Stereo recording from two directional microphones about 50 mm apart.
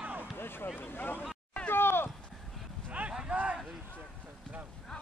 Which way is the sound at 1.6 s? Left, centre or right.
Left.